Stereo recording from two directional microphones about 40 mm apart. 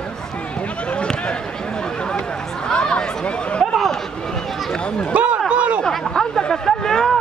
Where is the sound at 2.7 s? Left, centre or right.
Left.